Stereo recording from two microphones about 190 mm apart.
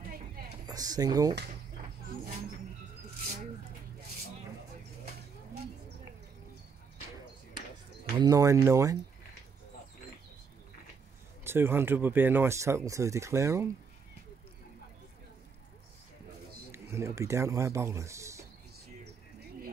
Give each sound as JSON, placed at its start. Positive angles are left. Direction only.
{"t": 0.7, "sound": "speech", "side_deg": -20}
{"t": 2.0, "sound": "vehicle", "side_deg": -40}
{"t": 8.2, "sound": "speech", "side_deg": -15}
{"t": 11.4, "sound": "speech", "side_deg": -10}
{"t": 16.7, "sound": "speech", "side_deg": -15}